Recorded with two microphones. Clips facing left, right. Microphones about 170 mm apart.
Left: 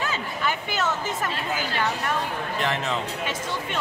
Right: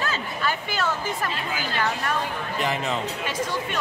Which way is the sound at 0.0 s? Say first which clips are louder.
Even; 15° left (ahead or behind).